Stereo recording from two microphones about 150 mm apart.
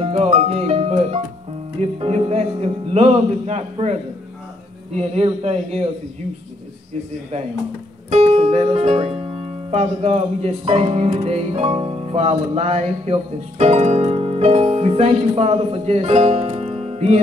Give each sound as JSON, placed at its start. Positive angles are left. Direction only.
{"t": 0.0, "sound": "music", "side_deg": -40}
{"t": 4.9, "sound": "speech", "side_deg": -45}
{"t": 8.1, "sound": "speech", "side_deg": -45}